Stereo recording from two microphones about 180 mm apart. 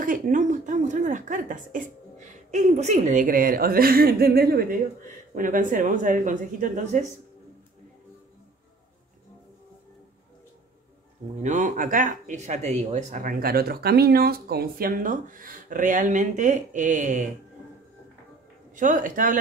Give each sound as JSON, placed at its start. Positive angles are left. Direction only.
{"t": 0.0, "sound": "speech", "side_deg": -45}
{"t": 11.4, "sound": "speech", "side_deg": -45}
{"t": 18.8, "sound": "speech", "side_deg": -45}